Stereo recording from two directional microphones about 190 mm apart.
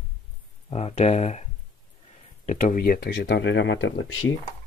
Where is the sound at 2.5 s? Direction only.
40° left (ahead or behind); by 4.3 s 90° left.